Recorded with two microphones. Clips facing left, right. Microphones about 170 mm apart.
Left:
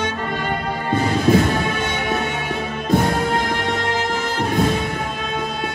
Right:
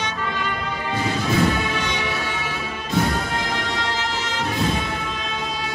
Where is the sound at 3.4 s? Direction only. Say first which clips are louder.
Left 4 dB; 50° left (ahead or behind).